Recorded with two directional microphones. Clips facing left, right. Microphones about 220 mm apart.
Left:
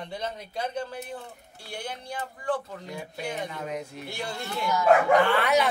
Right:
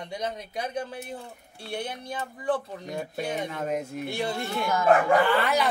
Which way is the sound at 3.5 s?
50° right (ahead or behind).